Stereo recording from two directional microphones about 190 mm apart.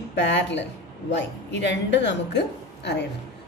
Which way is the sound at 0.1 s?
70° left (ahead or behind).